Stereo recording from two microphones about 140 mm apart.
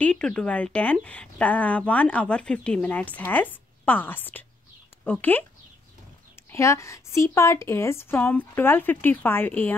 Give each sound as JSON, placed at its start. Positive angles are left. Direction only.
{"t": 0.0, "sound": "a woman's voice", "side_deg": 5}
{"t": 6.5, "sound": "a woman's voice", "side_deg": 20}